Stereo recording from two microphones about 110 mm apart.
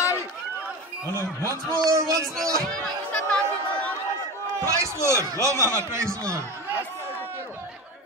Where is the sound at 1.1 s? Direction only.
25° right (ahead or behind).